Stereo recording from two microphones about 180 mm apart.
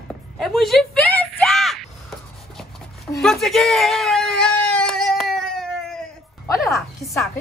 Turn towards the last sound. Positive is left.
turn(degrees=0)  # may be behind; listen again after turning